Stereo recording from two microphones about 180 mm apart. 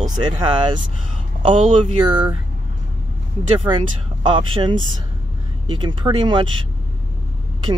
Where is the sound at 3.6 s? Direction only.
25° right (ahead or behind).